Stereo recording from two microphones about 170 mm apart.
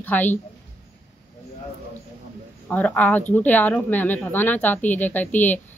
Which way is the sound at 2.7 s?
10° left (ahead or behind).